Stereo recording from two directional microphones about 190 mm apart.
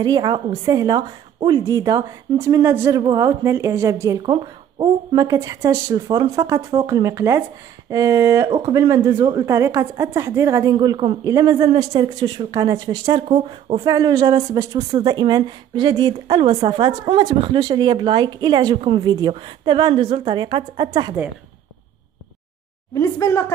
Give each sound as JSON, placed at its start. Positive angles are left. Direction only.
{"t": 0.0, "sound": "a woman's voice", "side_deg": -20}
{"t": 22.9, "sound": "a woman's voice", "side_deg": 15}